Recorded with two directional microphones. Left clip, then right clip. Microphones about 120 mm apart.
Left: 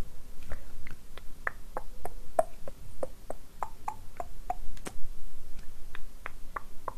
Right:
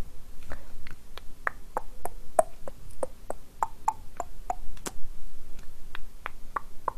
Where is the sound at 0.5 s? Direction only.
30° right (ahead or behind).